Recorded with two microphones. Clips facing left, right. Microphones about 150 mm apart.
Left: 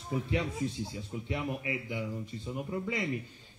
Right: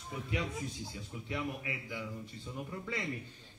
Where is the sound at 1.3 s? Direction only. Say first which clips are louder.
Left 4 dB; 20° left (ahead or behind).